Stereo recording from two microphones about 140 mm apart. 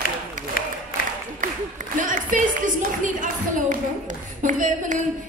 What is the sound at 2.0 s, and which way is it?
Speech, 70° right (ahead or behind).